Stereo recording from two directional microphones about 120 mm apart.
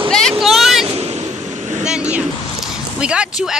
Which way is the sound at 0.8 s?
60° right (ahead or behind).